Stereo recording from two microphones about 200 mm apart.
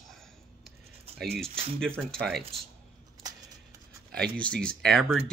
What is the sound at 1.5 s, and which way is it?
Speech, 30° right (ahead or behind).